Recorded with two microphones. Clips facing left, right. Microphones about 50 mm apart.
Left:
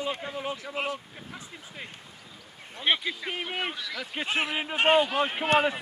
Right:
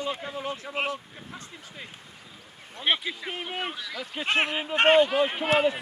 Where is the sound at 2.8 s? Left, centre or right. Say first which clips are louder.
Even; centre.